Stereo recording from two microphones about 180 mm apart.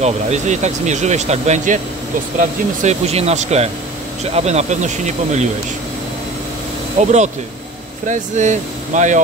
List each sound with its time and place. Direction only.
0.0 s speech: 40° right (ahead or behind)
2.8 s speech: 35° right (ahead or behind)
7.0 s speech: 40° right (ahead or behind)